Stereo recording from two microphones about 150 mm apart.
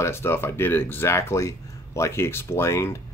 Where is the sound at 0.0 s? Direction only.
15° left (ahead or behind).